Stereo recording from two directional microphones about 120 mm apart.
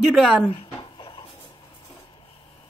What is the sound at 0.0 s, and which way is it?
Speech, 5° right (ahead or behind).